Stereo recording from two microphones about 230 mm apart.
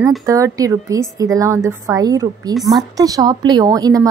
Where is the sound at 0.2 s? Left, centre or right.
Centre.